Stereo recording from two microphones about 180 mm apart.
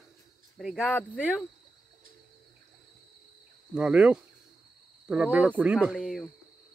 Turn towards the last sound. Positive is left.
turn(degrees=0)  # may be behind; listen again after turning